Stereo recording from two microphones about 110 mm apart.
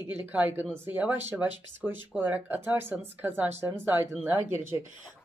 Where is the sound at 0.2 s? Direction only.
15° right (ahead or behind).